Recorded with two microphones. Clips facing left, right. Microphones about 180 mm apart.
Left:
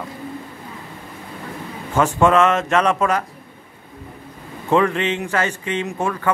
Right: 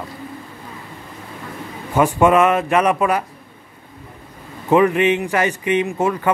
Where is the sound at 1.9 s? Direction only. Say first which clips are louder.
Right 2 dB; 10° right (ahead or behind).